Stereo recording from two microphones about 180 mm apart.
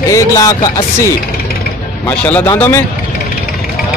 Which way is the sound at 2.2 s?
10° left (ahead or behind).